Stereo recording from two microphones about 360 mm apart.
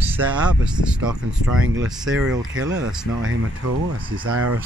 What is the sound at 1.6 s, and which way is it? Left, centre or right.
Speech, right.